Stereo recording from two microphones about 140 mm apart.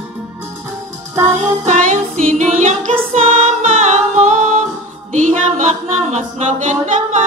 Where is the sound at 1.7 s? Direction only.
65° right (ahead or behind).